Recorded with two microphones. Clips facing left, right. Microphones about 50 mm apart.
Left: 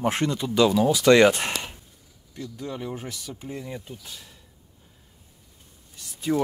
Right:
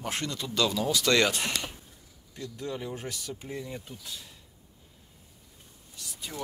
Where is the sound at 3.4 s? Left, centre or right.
Left.